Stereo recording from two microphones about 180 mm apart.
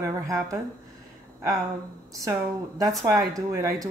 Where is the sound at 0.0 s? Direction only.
15° right (ahead or behind).